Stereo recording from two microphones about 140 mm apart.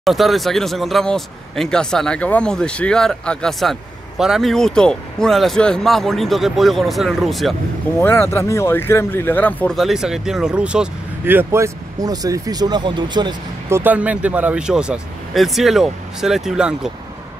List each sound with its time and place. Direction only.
0.0 s speech: centre (ahead or behind)
8.0 s speech: 15° left (ahead or behind)
9.8 s speech: 5° right (ahead or behind); by 13.4 s 30° right (ahead or behind)
13.7 s speech: 15° right (ahead or behind)